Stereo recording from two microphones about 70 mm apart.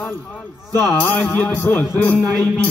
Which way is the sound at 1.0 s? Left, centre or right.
Left.